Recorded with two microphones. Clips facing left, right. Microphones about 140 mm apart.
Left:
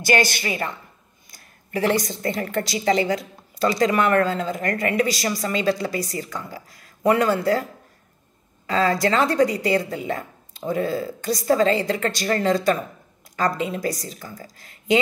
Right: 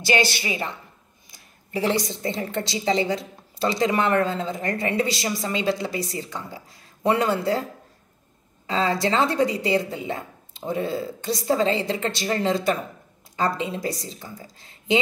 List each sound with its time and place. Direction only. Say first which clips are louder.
0.0 s a woman's voice: left 2 dB; 45° left (ahead or behind)
1.8 s speech: left 2 dB; 20° right (ahead or behind)
8.6 s speech: left 3 dB; 20° right (ahead or behind)